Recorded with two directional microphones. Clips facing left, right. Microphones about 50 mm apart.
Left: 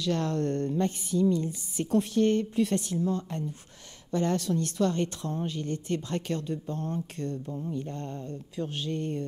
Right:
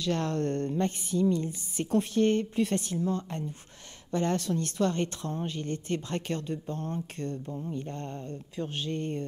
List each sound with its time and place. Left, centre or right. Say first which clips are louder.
0.0 s a woman's voice: left 1 dB; right